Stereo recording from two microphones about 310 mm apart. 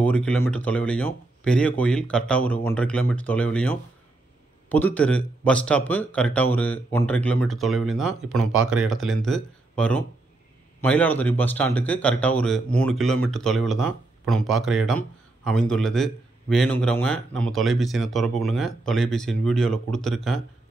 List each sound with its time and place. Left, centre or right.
0.0 s speech: centre
8.4 s speech: right
8.6 s speech: centre